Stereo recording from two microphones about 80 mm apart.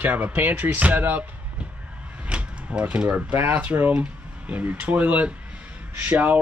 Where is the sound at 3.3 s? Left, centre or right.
Right.